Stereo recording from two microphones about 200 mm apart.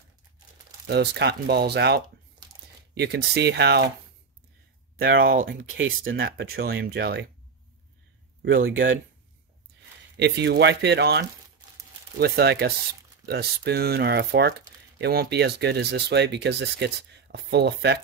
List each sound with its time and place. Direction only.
0.8 s speech: 55° right (ahead or behind)
4.9 s speech: 50° right (ahead or behind)
5.7 s speech: 75° right (ahead or behind)
6.0 s speech: 50° right (ahead or behind)
8.4 s speech: 50° right (ahead or behind)
10.1 s speech: 60° right (ahead or behind)